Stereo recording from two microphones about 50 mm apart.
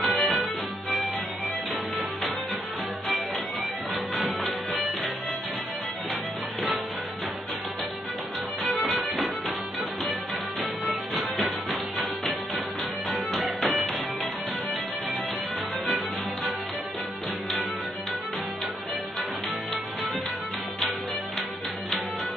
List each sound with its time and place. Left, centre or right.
0.0 s music: centre
4.2 s music: centre
8.6 s music: centre
10.6 s music: centre
13.1 s music: centre